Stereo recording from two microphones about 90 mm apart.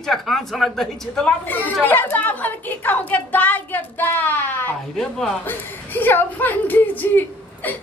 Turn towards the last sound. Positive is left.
turn(degrees=20)  # may be behind; listen again after turning